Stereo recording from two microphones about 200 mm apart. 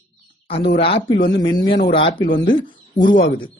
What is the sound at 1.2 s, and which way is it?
Speech, 45° left (ahead or behind).